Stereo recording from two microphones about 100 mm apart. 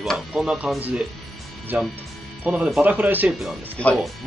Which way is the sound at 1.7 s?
15° right (ahead or behind).